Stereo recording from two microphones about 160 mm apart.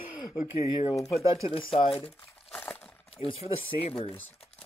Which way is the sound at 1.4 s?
35° left (ahead or behind).